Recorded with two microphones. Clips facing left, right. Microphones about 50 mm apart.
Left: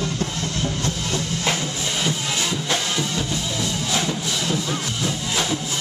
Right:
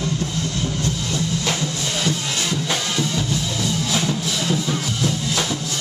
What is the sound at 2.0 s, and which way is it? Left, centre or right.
Music, centre.